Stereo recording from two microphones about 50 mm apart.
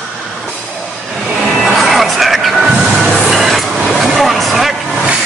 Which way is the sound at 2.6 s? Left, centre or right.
Centre.